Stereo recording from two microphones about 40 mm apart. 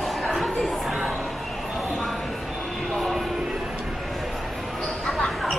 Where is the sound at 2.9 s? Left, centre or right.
Centre.